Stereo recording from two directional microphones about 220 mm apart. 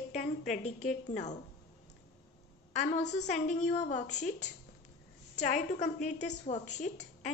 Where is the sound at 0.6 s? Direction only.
30° left (ahead or behind).